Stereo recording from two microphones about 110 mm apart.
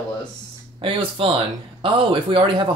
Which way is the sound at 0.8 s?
55° right (ahead or behind).